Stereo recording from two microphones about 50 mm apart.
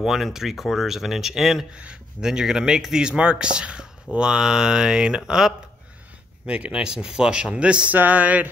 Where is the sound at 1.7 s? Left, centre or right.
Centre.